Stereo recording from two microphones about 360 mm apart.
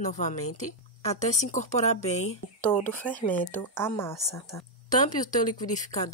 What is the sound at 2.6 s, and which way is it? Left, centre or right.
Speech, centre.